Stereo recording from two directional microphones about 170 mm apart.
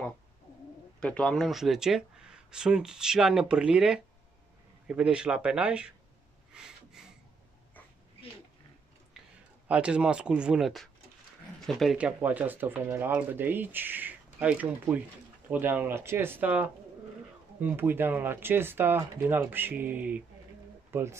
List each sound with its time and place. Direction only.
1.0 s speech: 5° left (ahead or behind)
6.5 s a sound: 5° right (ahead or behind)
9.7 s speech: 5° right (ahead or behind)